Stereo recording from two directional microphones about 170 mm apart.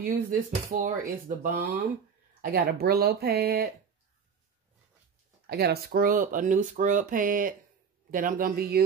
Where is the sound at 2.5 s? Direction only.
65° right (ahead or behind).